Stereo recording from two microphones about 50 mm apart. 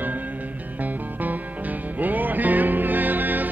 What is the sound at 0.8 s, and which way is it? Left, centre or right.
Music, right.